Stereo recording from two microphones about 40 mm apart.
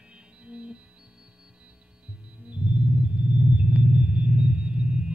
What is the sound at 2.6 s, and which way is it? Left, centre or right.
Sonar, right.